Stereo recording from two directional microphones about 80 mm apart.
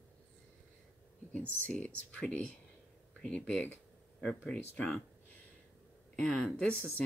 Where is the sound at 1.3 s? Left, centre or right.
Centre.